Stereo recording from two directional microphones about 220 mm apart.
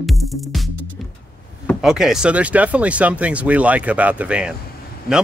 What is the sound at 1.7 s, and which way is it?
Speech, centre (ahead or behind).